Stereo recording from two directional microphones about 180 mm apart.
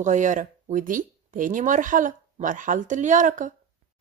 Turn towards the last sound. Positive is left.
turn(degrees=-45)  # may be behind; listen again after turning